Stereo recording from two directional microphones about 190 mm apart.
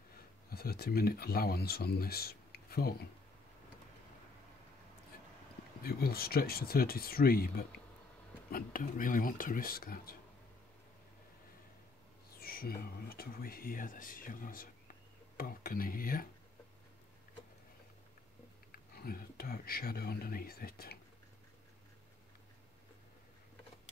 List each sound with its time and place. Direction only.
0.5 s speech: 55° left (ahead or behind)
5.8 s speech: 55° left (ahead or behind)
12.4 s speech: 50° left (ahead or behind)
18.7 s speech: 50° left (ahead or behind)